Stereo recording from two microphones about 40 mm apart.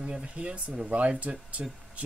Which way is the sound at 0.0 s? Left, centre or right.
Right.